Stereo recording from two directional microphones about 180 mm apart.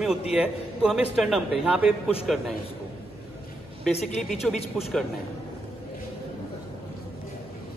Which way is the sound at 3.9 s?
35° left (ahead or behind).